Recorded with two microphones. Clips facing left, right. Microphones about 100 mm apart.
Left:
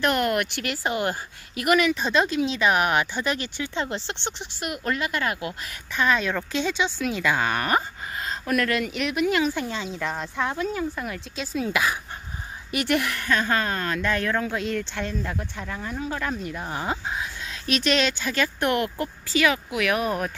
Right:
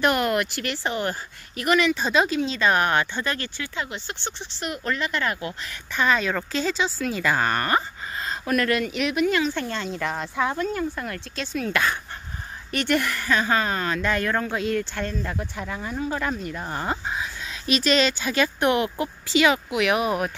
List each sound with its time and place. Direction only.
0.0 s speech: 5° right (ahead or behind)
0.8 s speech: 15° left (ahead or behind)
3.8 s speech: 35° left (ahead or behind)
4.2 s speech: 10° left (ahead or behind)
7.6 s a sound: 10° left (ahead or behind)
8.3 s speech: centre (ahead or behind)
18.2 s speech: 15° right (ahead or behind)